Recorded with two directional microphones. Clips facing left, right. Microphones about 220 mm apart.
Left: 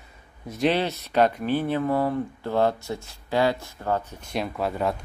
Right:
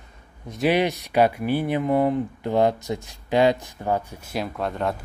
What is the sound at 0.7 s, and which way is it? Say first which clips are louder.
Speech: right 3 dB; 15° right (ahead or behind).